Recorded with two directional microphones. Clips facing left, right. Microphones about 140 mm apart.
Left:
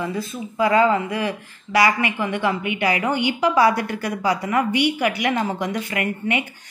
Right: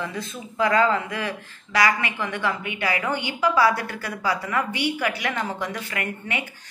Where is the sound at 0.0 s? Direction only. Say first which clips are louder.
Left 5 dB; 10° left (ahead or behind).